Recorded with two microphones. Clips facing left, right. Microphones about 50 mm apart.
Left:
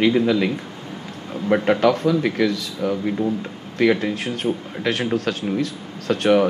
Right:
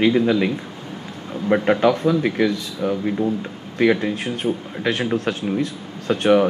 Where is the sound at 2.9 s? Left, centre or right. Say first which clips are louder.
Right 1 dB; centre.